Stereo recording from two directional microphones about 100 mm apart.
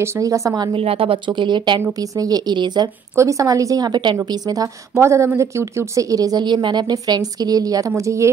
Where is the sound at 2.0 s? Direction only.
40° right (ahead or behind).